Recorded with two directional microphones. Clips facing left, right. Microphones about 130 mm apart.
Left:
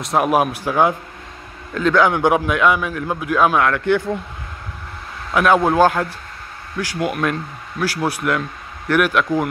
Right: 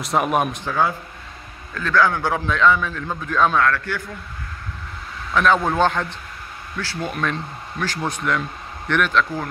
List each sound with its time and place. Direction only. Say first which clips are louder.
0.0 s a man's voice: left 3 dB; centre (ahead or behind); by 4.2 s 20° left (ahead or behind)
5.3 s a man's voice: left 3 dB; 10° left (ahead or behind)